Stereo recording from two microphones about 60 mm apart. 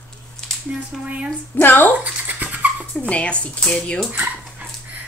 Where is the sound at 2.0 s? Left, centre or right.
Right.